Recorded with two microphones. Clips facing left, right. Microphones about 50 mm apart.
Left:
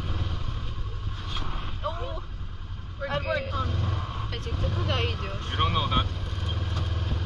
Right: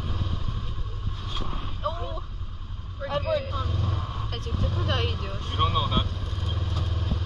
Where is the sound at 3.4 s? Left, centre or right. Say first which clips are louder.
Left 1 dB; left.